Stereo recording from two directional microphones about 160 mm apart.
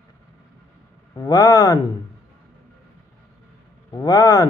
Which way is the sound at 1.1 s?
25° left (ahead or behind).